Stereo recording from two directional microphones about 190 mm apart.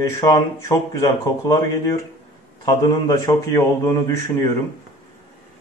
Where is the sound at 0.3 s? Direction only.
15° left (ahead or behind).